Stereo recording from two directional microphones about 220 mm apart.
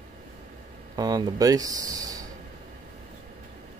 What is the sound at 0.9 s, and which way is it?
Speech, 20° right (ahead or behind).